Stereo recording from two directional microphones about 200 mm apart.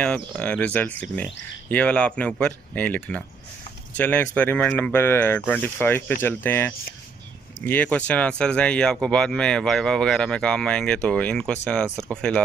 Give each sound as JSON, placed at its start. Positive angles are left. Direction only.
{"t": 0.0, "sound": "speech", "side_deg": 5}